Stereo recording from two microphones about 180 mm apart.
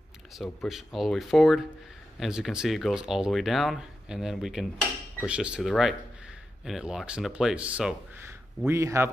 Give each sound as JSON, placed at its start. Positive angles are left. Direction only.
{"t": 0.4, "sound": "speech", "side_deg": 0}